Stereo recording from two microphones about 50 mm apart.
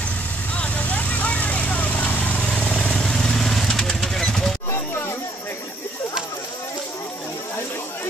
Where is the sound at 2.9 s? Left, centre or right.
Centre.